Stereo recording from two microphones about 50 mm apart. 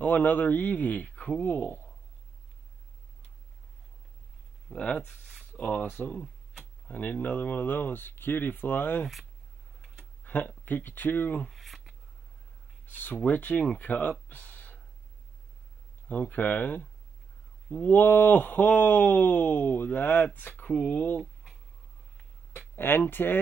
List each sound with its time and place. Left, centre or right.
0.0 s speech: left
4.7 s speech: centre
5.9 s speech: left
10.2 s speech: left
11.4 s speech: centre
12.8 s speech: left
14.3 s a sound: left
16.1 s speech: left
20.7 s speech: left
22.8 s speech: left